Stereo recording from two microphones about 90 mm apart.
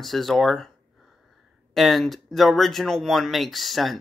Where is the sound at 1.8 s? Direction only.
Centre (ahead or behind).